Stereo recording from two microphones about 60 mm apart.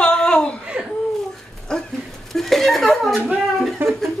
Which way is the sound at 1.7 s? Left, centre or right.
Centre.